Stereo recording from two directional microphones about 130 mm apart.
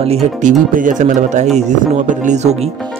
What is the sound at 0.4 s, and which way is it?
Speech, 85° right.